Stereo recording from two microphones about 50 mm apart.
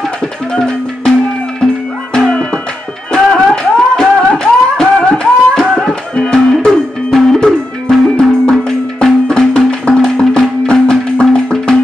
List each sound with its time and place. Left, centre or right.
0.5 s music: centre
3.1 s music: centre
9.7 s music: centre